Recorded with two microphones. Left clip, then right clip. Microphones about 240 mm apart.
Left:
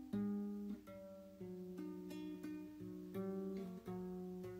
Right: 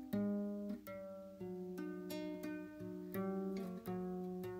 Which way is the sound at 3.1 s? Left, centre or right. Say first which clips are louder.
Right 3 dB; right.